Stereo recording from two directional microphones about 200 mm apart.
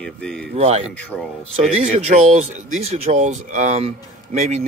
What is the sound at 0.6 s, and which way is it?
Speech, 30° right (ahead or behind).